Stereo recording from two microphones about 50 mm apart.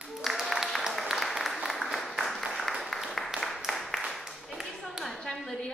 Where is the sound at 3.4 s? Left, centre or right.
Centre.